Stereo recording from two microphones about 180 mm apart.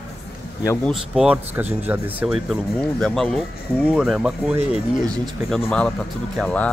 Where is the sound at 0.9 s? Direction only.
5° right (ahead or behind).